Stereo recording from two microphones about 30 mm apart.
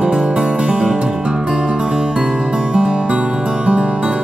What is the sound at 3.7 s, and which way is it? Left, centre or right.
Music, right.